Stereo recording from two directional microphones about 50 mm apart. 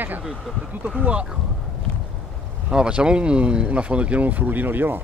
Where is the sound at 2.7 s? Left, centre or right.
Centre; by 5.0 s right.